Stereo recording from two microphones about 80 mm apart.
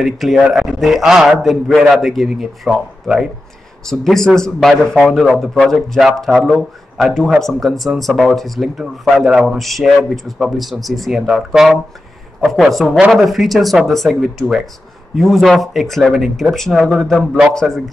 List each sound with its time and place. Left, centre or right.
0.0 s a man's voice: centre